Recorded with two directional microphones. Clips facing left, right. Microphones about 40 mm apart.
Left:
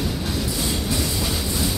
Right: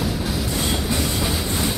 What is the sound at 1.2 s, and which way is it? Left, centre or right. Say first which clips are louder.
Train: right 2 dB; centre.